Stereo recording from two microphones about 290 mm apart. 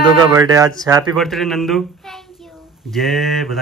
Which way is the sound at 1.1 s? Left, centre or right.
Centre.